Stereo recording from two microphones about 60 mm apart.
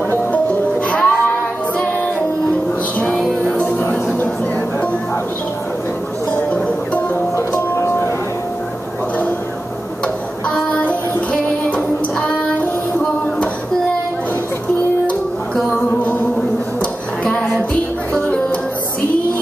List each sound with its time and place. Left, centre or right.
0.3 s music: left
3.0 s music: centre
10.5 s child singing: left
11.7 s music: left
17.2 s music: centre